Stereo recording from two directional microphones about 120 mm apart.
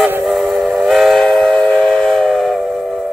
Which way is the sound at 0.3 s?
Centre (ahead or behind).